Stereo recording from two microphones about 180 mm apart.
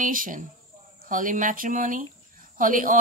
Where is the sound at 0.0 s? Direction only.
50° right (ahead or behind).